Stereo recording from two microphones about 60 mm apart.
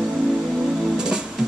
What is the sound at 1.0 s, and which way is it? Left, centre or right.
Music, centre.